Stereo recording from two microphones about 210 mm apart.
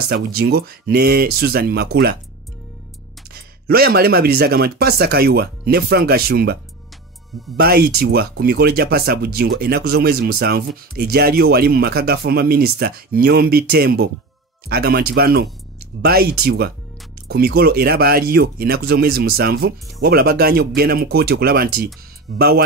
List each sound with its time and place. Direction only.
0.1 s speech: 50° right (ahead or behind)
3.3 s speech: 45° right (ahead or behind)